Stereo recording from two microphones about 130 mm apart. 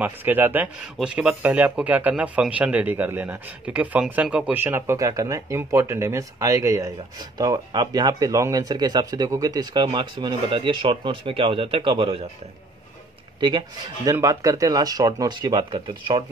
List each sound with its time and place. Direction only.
0.0 s a man's voice: 15° right (ahead or behind); by 12.3 s 45° right (ahead or behind)
13.4 s speech: 35° right (ahead or behind)
14.1 s speech: 25° right (ahead or behind)